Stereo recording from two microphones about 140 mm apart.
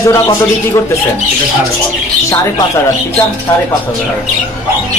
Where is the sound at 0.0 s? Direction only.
20° left (ahead or behind).